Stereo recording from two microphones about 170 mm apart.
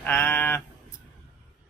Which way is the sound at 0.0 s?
15° left (ahead or behind).